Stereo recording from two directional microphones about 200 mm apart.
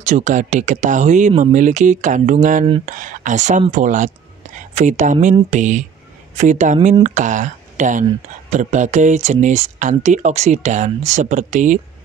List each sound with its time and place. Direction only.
0.0 s speech: 35° right (ahead or behind)